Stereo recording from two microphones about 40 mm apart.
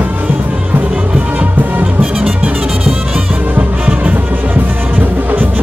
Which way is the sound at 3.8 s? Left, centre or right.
Right.